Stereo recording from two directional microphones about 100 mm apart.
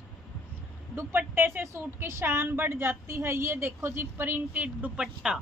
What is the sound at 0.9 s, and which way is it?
A woman's voice, 20° right (ahead or behind).